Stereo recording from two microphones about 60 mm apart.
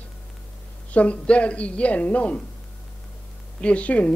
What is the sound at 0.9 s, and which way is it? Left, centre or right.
A woman's voice, left.